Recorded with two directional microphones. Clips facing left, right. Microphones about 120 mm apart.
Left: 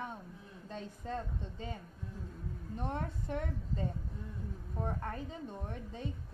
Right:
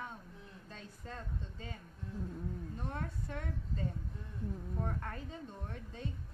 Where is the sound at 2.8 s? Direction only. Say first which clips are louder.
Left 7 dB; 20° left (ahead or behind).